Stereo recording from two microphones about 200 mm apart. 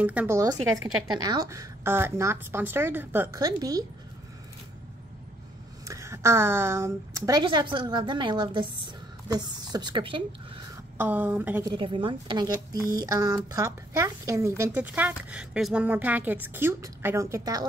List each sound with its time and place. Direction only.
0.0 s speech: 5° right (ahead or behind)
5.9 s a woman's voice: 15° right (ahead or behind)
11.0 s speech: 10° right (ahead or behind)
11.7 s speech: 25° right (ahead or behind)